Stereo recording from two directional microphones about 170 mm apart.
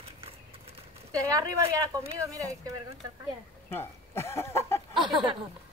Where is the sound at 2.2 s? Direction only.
20° right (ahead or behind).